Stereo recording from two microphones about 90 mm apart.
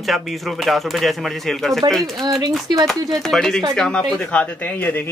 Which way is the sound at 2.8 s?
5° left (ahead or behind).